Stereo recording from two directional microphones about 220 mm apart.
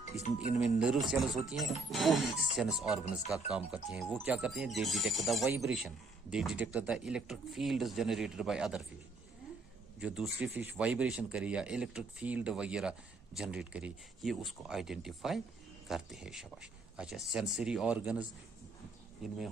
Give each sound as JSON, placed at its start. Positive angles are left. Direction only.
{"t": 0.0, "sound": "speech", "side_deg": 30}
{"t": 0.6, "sound": "speech", "side_deg": -5}
{"t": 9.9, "sound": "speech", "side_deg": -5}